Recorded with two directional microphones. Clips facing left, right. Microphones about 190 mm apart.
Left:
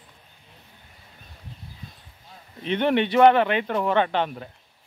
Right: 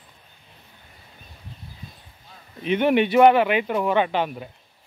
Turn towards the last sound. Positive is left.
turn(degrees=-10)  # may be behind; listen again after turning